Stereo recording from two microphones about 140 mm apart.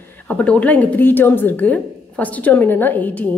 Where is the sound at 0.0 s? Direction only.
15° left (ahead or behind).